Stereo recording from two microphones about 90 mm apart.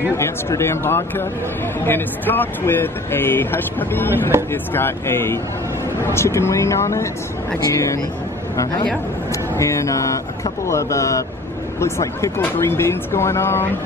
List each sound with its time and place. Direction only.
0.2 s speech: 30° left (ahead or behind)
9.6 s speech: 35° left (ahead or behind)